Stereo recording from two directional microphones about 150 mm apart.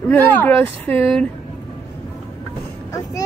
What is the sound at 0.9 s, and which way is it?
Speech, centre (ahead or behind).